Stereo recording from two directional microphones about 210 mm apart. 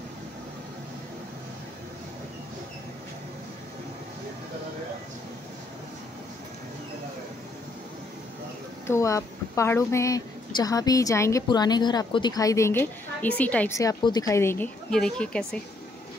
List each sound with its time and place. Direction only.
8.8 s a woman's voice: 15° left (ahead or behind)